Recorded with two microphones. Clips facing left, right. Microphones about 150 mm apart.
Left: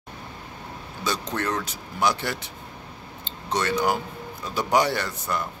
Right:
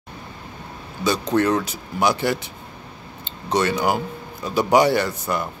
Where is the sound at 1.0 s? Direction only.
5° right (ahead or behind).